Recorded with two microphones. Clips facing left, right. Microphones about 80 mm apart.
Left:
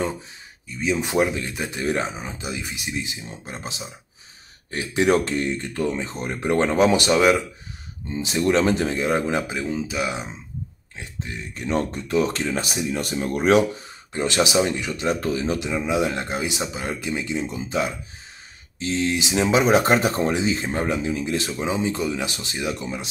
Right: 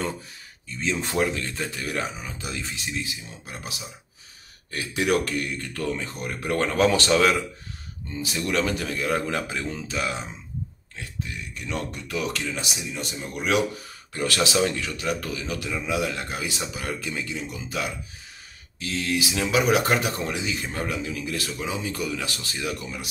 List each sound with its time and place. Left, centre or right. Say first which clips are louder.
0.7 s speech: left 4 dB; centre
11.0 s speech: left 1 dB; left
13.4 s speech: left 6 dB; left